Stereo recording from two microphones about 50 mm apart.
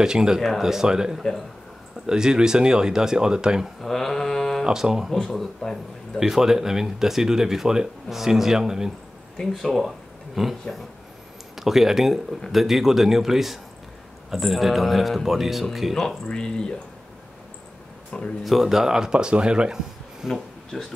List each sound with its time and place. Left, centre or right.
0.0 s speech: centre
3.8 s mantra: centre
4.6 s speech: centre
5.1 s a man's voice: centre
6.1 s speech: centre
9.5 s speech: centre
11.5 s a man's voice: centre
16.3 s speech: centre
18.4 s speech: centre
20.7 s speech: centre